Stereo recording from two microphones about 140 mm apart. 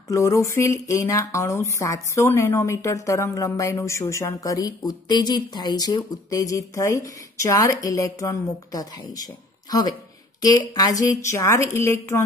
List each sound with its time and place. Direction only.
0.1 s speech: 20° left (ahead or behind)